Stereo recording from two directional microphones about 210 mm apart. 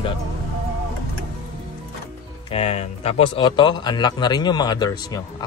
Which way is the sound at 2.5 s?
30° left (ahead or behind).